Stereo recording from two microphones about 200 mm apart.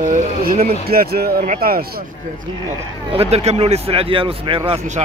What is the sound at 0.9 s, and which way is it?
A man's voice, 50° right (ahead or behind).